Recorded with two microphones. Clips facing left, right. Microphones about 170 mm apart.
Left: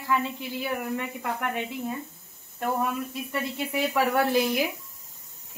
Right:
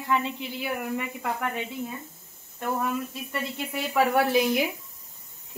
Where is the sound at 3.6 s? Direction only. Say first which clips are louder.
Left 4 dB; centre (ahead or behind).